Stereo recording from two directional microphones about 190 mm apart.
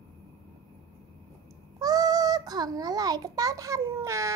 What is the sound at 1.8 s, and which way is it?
A child's voice, 20° right (ahead or behind).